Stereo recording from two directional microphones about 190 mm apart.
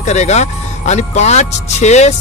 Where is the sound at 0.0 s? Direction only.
35° left (ahead or behind).